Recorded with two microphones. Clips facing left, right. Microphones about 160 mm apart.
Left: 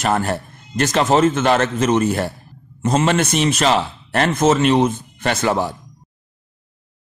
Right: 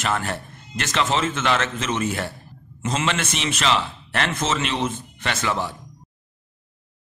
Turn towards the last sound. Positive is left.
turn(degrees=40)  # may be behind; listen again after turning